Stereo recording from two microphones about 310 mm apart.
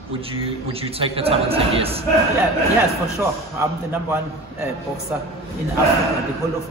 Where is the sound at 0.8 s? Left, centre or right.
Centre.